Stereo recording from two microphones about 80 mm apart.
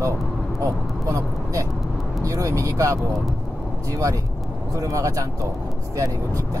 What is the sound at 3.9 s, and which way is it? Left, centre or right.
Speech, right.